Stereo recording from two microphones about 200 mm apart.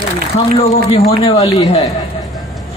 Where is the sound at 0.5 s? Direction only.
30° left (ahead or behind).